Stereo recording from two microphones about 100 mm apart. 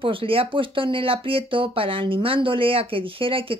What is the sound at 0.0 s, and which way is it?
Speech, 65° right (ahead or behind).